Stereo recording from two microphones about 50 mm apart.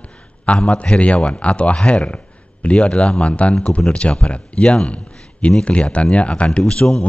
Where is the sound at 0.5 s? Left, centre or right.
Left.